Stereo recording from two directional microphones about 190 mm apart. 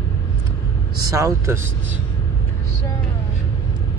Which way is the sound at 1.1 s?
15° right (ahead or behind).